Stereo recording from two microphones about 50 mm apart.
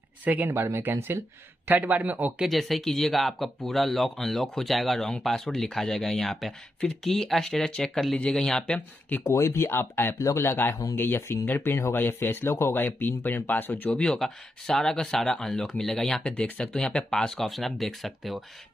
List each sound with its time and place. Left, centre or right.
0.2 s speech: right
0.7 s speech: right
1.7 s a man's voice: right
2.4 s speech: centre
9.2 s speech: left
10.1 s speech: left
10.4 s speech: left
12.8 s speech: left
13.9 s speech: centre
16.2 s speech: left; by 18.4 s centre